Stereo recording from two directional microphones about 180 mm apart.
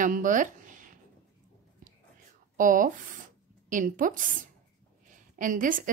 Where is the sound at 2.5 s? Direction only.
50° right (ahead or behind).